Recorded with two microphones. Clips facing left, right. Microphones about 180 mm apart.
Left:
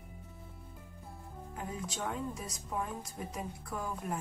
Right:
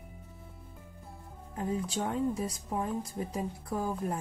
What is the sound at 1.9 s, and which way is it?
A woman's voice, 30° right (ahead or behind).